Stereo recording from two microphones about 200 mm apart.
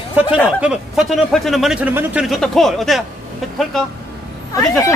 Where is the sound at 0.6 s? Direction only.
5° right (ahead or behind).